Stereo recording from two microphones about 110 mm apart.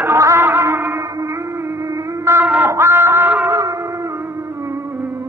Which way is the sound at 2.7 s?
25° right (ahead or behind).